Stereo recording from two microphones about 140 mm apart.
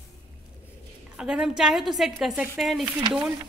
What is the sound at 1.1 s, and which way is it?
A woman's voice, 5° right (ahead or behind).